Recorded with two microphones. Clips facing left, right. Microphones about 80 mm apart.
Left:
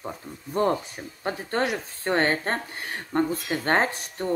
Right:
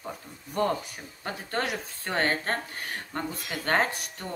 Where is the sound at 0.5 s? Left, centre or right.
Left.